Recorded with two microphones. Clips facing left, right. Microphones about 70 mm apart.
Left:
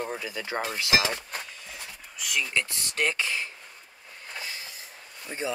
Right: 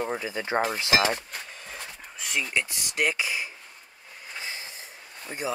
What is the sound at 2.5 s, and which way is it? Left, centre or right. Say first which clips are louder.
Speech: right 1 dB; centre.